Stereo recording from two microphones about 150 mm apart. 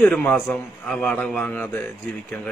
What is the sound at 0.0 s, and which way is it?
A man's voice, 10° left (ahead or behind).